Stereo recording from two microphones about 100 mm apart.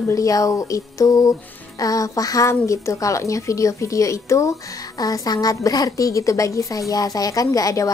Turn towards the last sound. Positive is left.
turn(degrees=35)  # may be behind; listen again after turning